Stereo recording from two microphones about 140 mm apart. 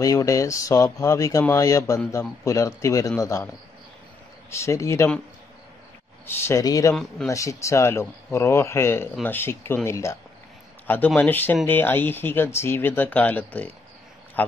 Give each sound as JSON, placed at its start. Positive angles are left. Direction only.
{"t": 0.0, "sound": "speech", "side_deg": 25}
{"t": 4.6, "sound": "speech", "side_deg": 20}
{"t": 6.2, "sound": "speech", "side_deg": 15}
{"t": 11.1, "sound": "speech", "side_deg": 15}